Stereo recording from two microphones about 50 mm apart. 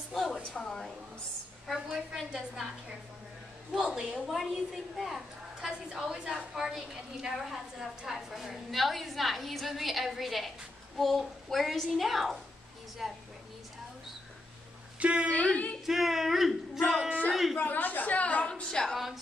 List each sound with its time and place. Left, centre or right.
0.1 s a sound: centre
0.6 s a woman's voice: centre
1.7 s a woman's voice: centre
3.8 s a woman's voice: centre
15.0 s a woman's voice: right
15.2 s a woman's voice: left
15.8 s a woman's voice: centre
17.6 s a woman's voice: left
18.4 s a woman's voice: centre